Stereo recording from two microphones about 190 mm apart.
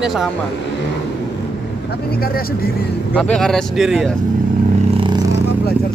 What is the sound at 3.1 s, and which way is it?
A man's voice, 5° left (ahead or behind).